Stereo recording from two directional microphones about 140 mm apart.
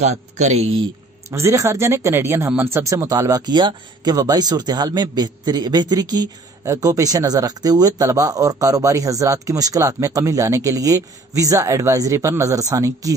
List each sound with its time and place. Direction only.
0.0 s speech: 55° right (ahead or behind)
1.3 s speech: 20° right (ahead or behind)